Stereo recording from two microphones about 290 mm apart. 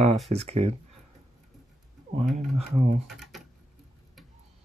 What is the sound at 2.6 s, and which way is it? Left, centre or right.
Rub, right.